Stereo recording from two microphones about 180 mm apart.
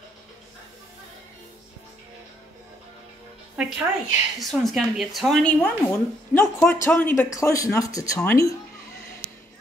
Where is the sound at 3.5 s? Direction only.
5° right (ahead or behind); by 8.3 s 20° left (ahead or behind).